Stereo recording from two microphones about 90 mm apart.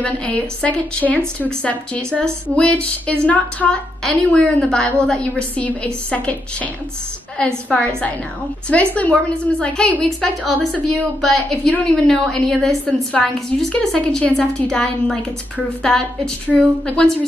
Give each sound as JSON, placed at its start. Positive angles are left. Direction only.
{"t": 0.0, "sound": "a woman's voice", "side_deg": 15}
{"t": 16.5, "sound": "a woman's voice", "side_deg": -10}
{"t": 16.8, "sound": "a woman's voice", "side_deg": 10}